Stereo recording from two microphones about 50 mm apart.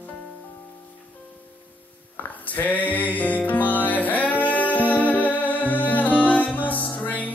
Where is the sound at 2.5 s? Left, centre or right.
Left.